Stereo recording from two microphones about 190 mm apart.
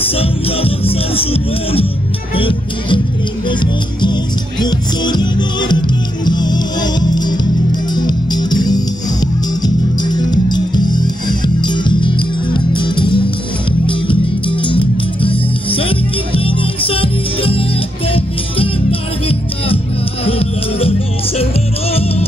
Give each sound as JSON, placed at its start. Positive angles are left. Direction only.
{"t": 0.1, "sound": "speech", "side_deg": 30}
{"t": 2.3, "sound": "music", "side_deg": 25}